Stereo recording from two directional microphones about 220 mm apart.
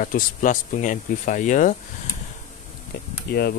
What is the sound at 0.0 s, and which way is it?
Speech, 40° left (ahead or behind).